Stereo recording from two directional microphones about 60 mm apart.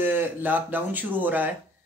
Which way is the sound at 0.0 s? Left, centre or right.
Right.